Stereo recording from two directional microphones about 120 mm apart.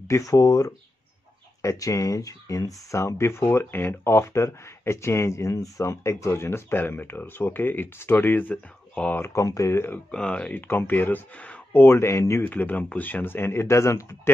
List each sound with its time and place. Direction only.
0.1 s speech: 30° left (ahead or behind)
10.1 s speech: 10° left (ahead or behind)